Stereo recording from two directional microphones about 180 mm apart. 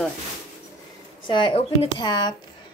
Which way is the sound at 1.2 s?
25° left (ahead or behind).